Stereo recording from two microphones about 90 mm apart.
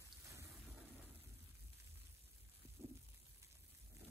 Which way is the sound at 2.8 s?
30° right (ahead or behind).